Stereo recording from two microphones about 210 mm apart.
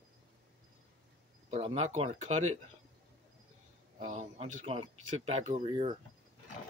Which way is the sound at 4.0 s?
35° right (ahead or behind).